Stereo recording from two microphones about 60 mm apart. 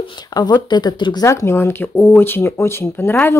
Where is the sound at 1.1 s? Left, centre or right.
Left.